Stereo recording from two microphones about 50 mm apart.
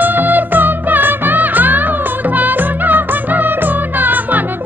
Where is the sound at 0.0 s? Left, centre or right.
Right.